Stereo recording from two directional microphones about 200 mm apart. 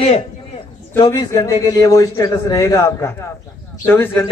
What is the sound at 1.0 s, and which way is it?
A man's voice, 20° left (ahead or behind).